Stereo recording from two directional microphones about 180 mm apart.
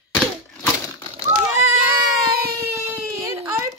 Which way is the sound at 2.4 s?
60° right (ahead or behind).